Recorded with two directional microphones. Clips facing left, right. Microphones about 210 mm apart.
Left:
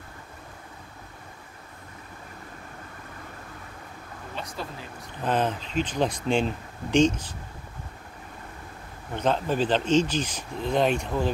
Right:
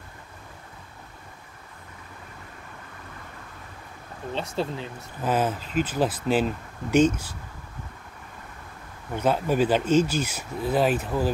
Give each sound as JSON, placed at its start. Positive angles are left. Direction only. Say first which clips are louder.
{"t": 4.4, "sound": "speech", "louder": "right 7 dB", "side_deg": -25}
{"t": 5.2, "sound": "speech", "louder": "right 1 dB", "side_deg": -5}
{"t": 9.1, "sound": "speech", "louder": "right 2 dB", "side_deg": -10}